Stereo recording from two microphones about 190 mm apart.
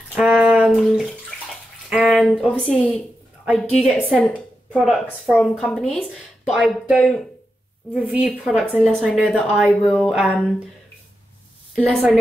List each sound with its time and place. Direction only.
0.1 s bathtub: 5° right (ahead or behind)
1.9 s a woman's voice: centre (ahead or behind)
11.7 s a woman's voice: 5° right (ahead or behind)